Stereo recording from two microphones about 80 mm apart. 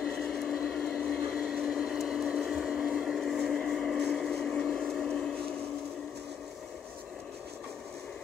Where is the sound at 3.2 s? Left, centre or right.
Centre.